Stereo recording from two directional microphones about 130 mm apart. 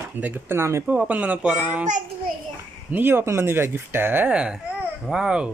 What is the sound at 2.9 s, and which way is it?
Speech, 15° right (ahead or behind).